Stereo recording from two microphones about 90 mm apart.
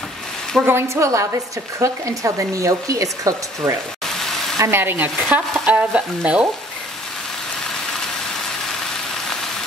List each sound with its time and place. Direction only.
0.7 s speech: 30° right (ahead or behind)
4.1 s a sound: 5° left (ahead or behind)
4.6 s frying: 25° right (ahead or behind)
5.3 s speech: 15° right (ahead or behind)